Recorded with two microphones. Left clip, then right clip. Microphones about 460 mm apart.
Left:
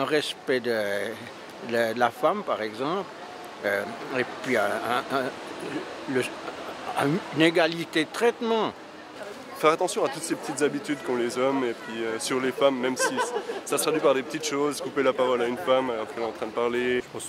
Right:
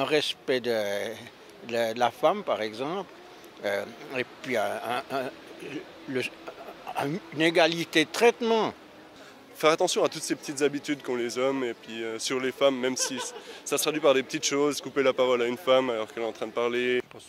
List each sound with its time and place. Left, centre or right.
0.0 s speech: right
7.0 s speech: right
9.6 s speech: right